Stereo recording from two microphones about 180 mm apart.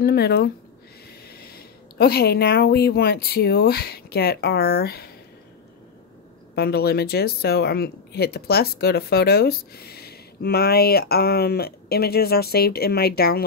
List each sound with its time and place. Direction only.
0.0 s speech: 60° left (ahead or behind)
6.5 s speech: 60° left (ahead or behind)